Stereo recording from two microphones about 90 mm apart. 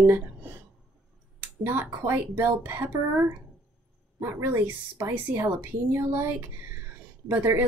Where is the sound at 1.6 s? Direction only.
25° right (ahead or behind).